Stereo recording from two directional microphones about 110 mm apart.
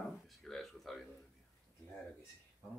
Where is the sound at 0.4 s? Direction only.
5° left (ahead or behind).